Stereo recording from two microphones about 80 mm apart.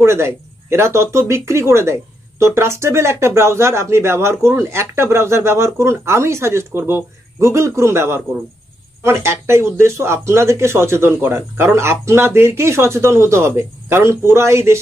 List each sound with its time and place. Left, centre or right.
0.0 s speech: right